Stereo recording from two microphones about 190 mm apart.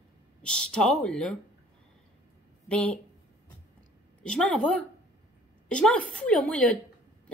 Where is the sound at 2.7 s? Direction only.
5° left (ahead or behind).